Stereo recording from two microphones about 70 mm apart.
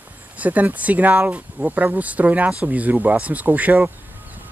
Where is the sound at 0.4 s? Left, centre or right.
Right.